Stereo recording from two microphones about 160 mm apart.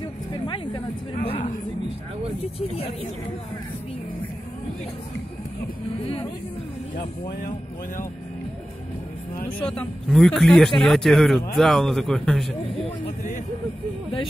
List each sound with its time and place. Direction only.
0.3 s speech: 30° left (ahead or behind)
9.6 s speech: 5° left (ahead or behind)